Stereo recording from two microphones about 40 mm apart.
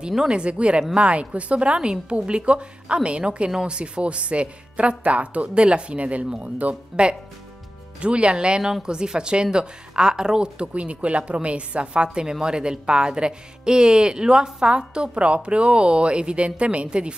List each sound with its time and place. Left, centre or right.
0.3 s a woman's voice: right
6.9 s speech: centre
8.0 s a woman's voice: right